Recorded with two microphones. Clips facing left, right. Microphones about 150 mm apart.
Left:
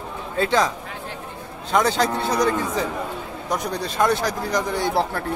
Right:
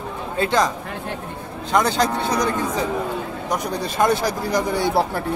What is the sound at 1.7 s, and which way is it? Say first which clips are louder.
Speech: right 1 dB; 5° left (ahead or behind).